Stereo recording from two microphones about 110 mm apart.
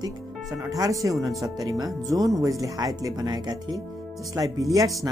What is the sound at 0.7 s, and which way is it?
Speech, 30° right (ahead or behind).